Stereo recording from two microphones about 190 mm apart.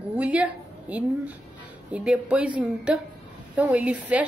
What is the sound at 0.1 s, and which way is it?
A woman's voice, 5° right (ahead or behind).